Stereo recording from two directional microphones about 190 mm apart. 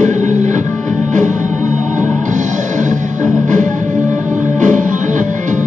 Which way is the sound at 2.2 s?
40° right (ahead or behind).